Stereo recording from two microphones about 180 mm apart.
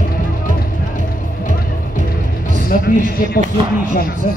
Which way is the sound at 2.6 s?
50° left (ahead or behind).